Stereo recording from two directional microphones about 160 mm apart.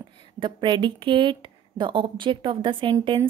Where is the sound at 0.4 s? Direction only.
30° right (ahead or behind).